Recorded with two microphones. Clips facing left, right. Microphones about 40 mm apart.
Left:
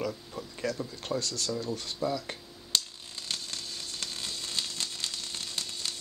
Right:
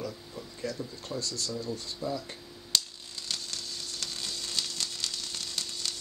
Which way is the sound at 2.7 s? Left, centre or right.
Left.